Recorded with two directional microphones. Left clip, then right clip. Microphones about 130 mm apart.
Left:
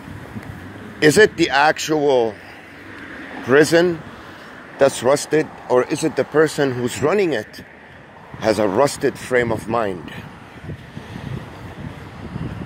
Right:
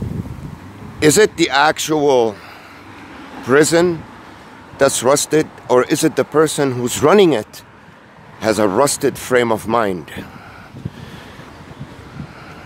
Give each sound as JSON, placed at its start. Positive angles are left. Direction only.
{"t": 0.9, "sound": "speech", "side_deg": -20}
{"t": 3.4, "sound": "speech", "side_deg": -20}
{"t": 6.3, "sound": "speech", "side_deg": -20}